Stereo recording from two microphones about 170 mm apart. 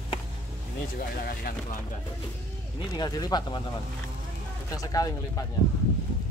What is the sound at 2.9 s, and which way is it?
Speech, 25° left (ahead or behind).